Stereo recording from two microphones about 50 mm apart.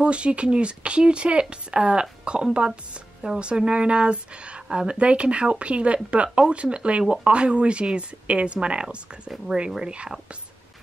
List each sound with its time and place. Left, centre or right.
0.0 s speech: right